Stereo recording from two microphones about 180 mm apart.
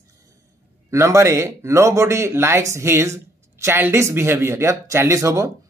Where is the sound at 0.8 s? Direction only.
15° right (ahead or behind).